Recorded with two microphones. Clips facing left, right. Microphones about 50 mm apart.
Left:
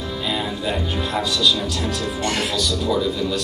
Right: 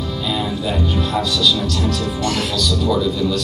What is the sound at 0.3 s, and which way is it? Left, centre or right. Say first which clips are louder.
A man's voice: right 2 dB; centre.